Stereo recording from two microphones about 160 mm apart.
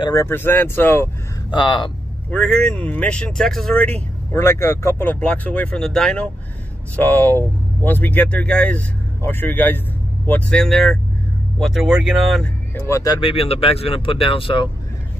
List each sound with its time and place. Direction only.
0.0 s speech: 20° left (ahead or behind)
1.5 s speech: 30° left (ahead or behind)
2.3 s speech: 5° left (ahead or behind)
12.7 s speech: 15° left (ahead or behind); by 14.7 s 30° left (ahead or behind)